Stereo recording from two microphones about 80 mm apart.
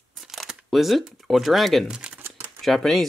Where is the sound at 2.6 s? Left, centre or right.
Centre.